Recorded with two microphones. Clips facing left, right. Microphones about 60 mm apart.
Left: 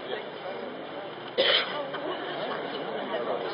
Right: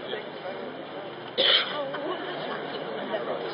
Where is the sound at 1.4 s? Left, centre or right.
Centre.